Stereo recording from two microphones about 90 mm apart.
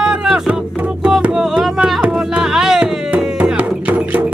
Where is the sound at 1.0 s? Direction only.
10° right (ahead or behind).